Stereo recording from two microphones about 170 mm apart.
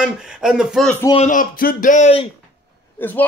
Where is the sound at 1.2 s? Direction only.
50° left (ahead or behind).